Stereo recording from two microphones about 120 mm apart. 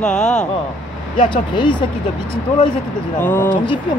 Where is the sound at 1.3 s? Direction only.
40° left (ahead or behind).